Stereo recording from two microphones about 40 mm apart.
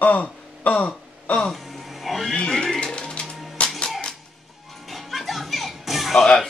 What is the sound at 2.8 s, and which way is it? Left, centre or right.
Music, left.